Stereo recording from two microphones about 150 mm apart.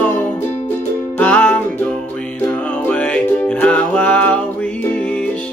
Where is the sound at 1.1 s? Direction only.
10° left (ahead or behind).